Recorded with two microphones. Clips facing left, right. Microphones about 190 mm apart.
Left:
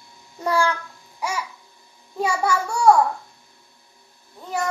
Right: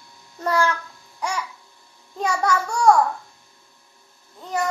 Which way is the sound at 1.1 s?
5° left (ahead or behind).